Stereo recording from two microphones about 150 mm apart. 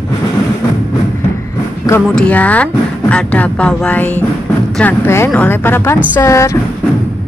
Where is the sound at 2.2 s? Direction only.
10° left (ahead or behind).